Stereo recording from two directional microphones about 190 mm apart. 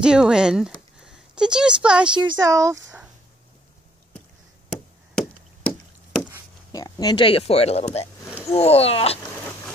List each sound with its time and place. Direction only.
0.0 s speech: 5° right (ahead or behind)
2.2 s speech: 20° right (ahead or behind)
6.7 s speech: 20° left (ahead or behind)
8.5 s a sound: 30° left (ahead or behind)